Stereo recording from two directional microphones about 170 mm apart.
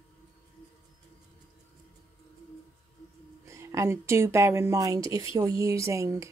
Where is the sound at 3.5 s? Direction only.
15° right (ahead or behind).